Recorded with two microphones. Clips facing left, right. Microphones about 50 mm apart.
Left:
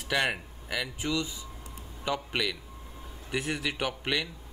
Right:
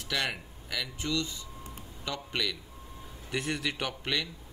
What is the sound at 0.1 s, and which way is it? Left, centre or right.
A man's voice, centre.